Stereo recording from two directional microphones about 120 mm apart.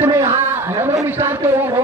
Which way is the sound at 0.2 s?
20° right (ahead or behind).